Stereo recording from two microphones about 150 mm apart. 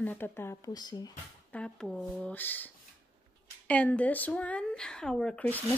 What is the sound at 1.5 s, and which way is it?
Speech, 5° left (ahead or behind).